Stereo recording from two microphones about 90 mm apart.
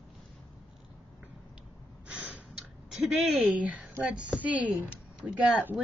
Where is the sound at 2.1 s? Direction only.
15° right (ahead or behind).